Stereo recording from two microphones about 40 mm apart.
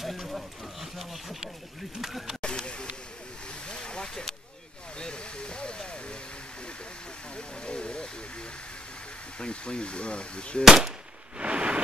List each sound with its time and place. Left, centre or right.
0.0 s a sound: centre
2.0 s speech: centre
2.4 s speech: left
3.6 s a sound: left
4.9 s speech: left
7.3 s vehicle: left
9.4 s speech: left
10.6 s gunshot: centre
11.3 s a sound: right